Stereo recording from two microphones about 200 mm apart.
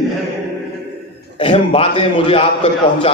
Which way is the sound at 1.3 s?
25° left (ahead or behind).